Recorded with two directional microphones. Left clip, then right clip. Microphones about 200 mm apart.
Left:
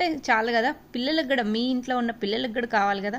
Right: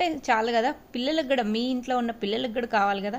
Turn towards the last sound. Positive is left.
turn(degrees=5)  # may be behind; listen again after turning